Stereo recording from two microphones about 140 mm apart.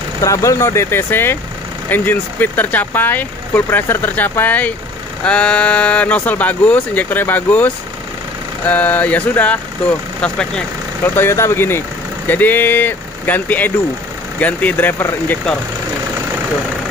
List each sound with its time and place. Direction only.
0.2 s speech: 20° left (ahead or behind); by 10.6 s 5° left (ahead or behind)
11.1 s speech: 20° left (ahead or behind)